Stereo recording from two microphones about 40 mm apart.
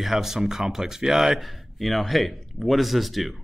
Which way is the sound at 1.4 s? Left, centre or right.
Centre.